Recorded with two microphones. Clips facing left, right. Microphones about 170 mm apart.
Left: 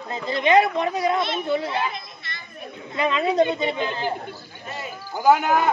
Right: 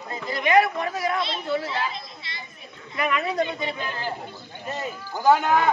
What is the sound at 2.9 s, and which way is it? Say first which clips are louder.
A man's voice: left 5 dB; 25° left (ahead or behind).